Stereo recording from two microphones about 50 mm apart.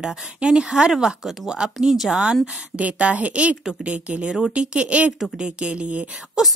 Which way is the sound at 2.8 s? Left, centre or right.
Right.